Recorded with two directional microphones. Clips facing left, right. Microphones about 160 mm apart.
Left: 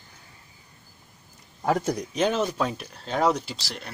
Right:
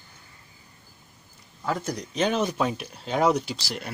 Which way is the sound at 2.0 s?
5° left (ahead or behind).